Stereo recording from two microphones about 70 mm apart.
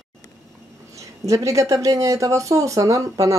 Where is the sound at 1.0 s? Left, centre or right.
Right.